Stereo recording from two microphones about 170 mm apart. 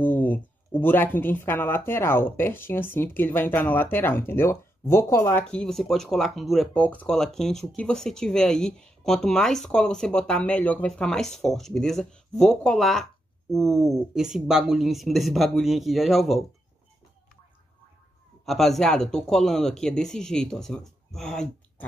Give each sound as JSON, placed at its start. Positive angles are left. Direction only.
{"t": 0.0, "sound": "speech", "side_deg": 10}
{"t": 18.4, "sound": "speech", "side_deg": 0}